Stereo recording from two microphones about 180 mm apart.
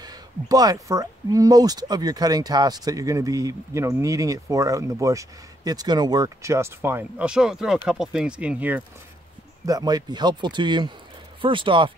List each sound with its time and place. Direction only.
0.0 s speech: 20° right (ahead or behind)
9.7 s speech: 20° right (ahead or behind)